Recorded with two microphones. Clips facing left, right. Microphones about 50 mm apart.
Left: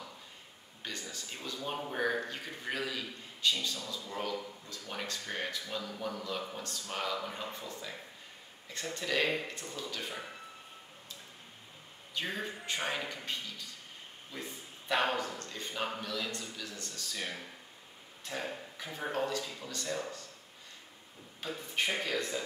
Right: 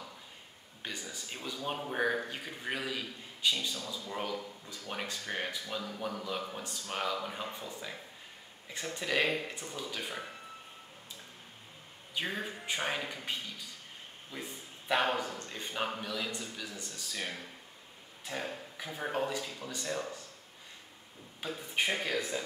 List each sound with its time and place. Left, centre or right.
0.8 s a sound: centre
1.9 s a man's voice: centre
12.1 s a man's voice: centre
15.3 s a man's voice: centre
18.2 s a sound: centre
19.1 s a man's voice: centre
21.4 s a man's voice: centre